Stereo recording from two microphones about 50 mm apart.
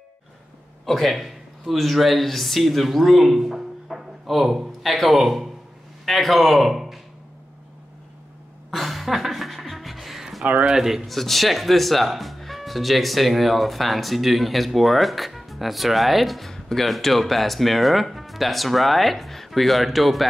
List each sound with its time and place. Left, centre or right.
0.8 s a man's voice: centre
8.6 s music: centre
10.4 s speech: right
10.7 s speech: centre
11.1 s speech: centre